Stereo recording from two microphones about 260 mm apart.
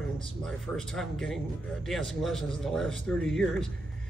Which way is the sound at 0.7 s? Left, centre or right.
Centre.